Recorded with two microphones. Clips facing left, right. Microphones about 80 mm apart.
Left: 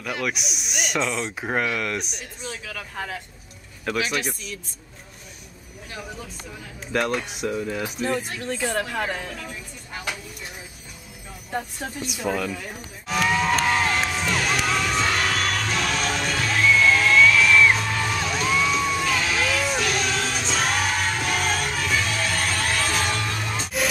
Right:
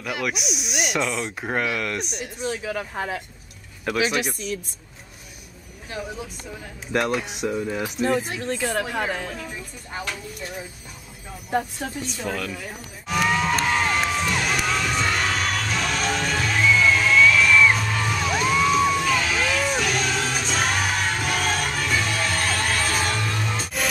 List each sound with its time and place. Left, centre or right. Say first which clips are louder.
0.0 s speech: right 1 dB; centre
2.6 s speech: right 5 dB; right
3.8 s speech: right 2 dB; centre
6.9 s speech: right 1 dB; centre
11.8 s a sound: left 1 dB; centre